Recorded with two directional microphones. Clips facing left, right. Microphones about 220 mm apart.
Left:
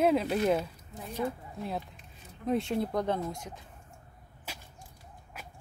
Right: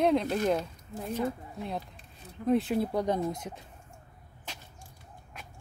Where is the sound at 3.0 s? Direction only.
15° right (ahead or behind).